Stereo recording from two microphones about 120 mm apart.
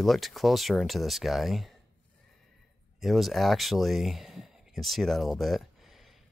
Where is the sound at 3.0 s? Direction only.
Centre (ahead or behind).